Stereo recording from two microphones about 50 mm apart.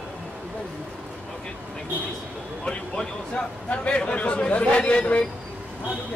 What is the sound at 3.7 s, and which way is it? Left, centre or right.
Speech, left.